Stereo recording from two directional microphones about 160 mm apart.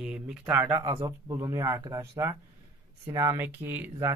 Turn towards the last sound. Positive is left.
turn(degrees=-15)  # may be behind; listen again after turning